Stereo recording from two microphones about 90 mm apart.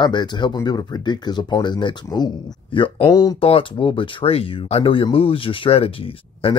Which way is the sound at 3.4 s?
90° left.